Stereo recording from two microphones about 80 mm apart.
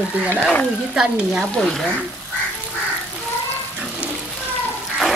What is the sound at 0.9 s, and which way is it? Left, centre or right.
Speech, centre.